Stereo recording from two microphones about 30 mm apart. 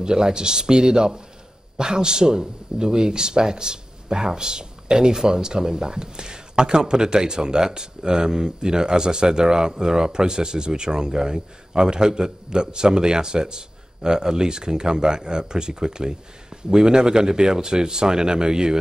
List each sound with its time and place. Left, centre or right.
0.0 s speech: right